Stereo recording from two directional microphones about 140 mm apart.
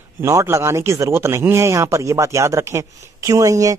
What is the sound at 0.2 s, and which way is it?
Speech, 20° right (ahead or behind).